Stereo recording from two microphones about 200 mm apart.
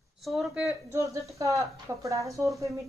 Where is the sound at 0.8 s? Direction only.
15° right (ahead or behind).